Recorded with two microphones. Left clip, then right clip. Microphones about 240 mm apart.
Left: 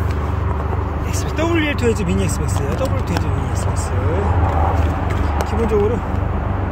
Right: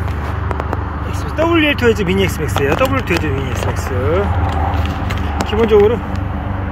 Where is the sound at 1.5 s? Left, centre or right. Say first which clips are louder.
Right 6 dB; centre.